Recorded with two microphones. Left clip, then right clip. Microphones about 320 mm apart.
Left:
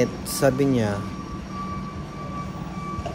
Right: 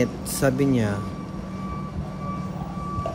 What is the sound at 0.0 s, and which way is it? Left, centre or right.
Speech, centre.